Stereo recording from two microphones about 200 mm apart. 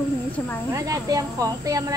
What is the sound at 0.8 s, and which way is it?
Speech, 15° right (ahead or behind).